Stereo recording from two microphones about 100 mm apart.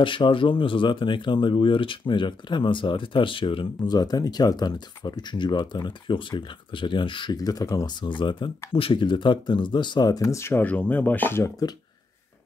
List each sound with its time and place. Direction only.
0.0 s speech: 55° left (ahead or behind)
3.9 s speech: 40° left (ahead or behind)
7.3 s speech: 40° left (ahead or behind); by 11.5 s 20° left (ahead or behind)